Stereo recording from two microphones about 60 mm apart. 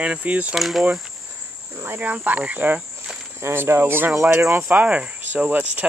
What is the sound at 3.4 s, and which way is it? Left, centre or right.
Speech, right.